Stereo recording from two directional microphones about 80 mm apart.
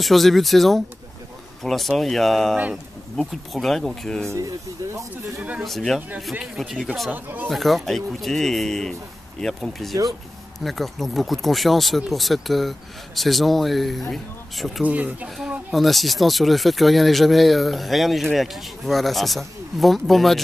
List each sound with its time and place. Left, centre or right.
0.0 s speech: centre
4.3 s speech: right
5.6 s speech: centre
5.9 s speech: centre
6.4 s speech: centre
7.1 s speech: right
7.4 s speech: centre
14.9 s speech: centre
15.2 s speech: centre